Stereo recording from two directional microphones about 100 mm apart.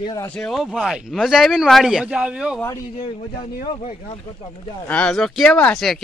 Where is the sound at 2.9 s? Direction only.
75° left (ahead or behind).